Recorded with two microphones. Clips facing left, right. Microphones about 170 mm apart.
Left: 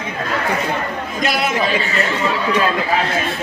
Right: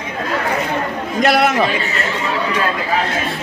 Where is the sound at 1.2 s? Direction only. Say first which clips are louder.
Right 6 dB; 65° right (ahead or behind).